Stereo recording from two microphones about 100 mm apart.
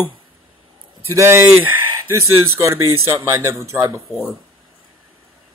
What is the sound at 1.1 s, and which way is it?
Speech, 25° right (ahead or behind).